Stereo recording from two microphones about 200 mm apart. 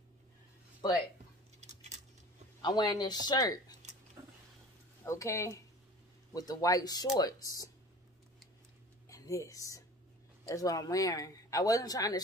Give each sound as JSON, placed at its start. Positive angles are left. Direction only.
{"t": 1.6, "sound": "coin", "side_deg": -35}
{"t": 2.6, "sound": "speech", "side_deg": 20}
{"t": 5.0, "sound": "speech", "side_deg": 15}
{"t": 9.1, "sound": "speech", "side_deg": 15}